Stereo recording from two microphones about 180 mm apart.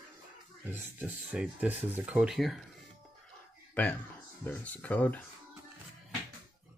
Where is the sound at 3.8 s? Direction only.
10° left (ahead or behind).